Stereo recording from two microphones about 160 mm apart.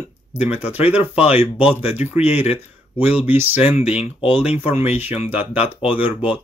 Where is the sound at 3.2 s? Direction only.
10° right (ahead or behind).